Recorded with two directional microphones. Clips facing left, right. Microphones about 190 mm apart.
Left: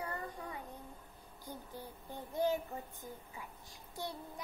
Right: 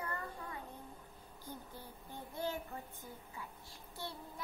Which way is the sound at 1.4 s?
15° left (ahead or behind).